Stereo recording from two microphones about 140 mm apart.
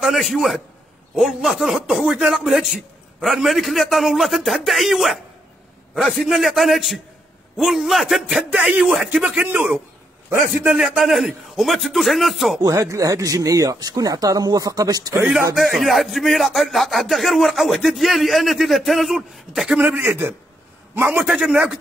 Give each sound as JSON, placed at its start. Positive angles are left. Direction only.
{"t": 0.0, "sound": "a man's voice", "side_deg": 0}
{"t": 12.6, "sound": "speech", "side_deg": -25}
{"t": 15.5, "sound": "speech", "side_deg": 0}
{"t": 19.8, "sound": "a man's voice", "side_deg": -15}